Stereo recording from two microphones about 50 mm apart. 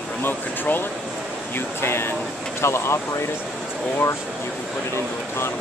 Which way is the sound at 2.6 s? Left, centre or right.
Left.